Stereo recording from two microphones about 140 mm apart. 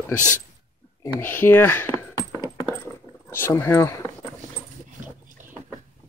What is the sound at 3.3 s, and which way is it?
Speech, 20° left (ahead or behind).